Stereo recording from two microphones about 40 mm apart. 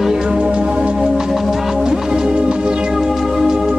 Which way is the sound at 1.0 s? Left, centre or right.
Centre.